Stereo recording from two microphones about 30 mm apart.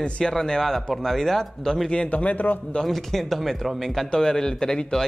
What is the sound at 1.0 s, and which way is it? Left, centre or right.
Speech, centre.